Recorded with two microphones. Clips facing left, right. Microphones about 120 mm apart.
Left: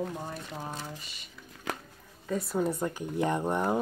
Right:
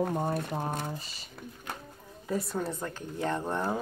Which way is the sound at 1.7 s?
90° left.